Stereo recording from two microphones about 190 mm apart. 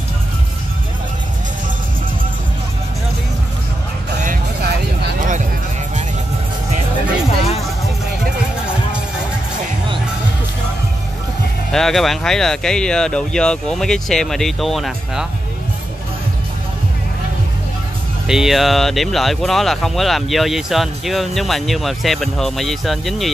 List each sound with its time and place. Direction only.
4.2 s music: 45° right (ahead or behind)
11.7 s speech: centre (ahead or behind)
18.2 s speech: centre (ahead or behind)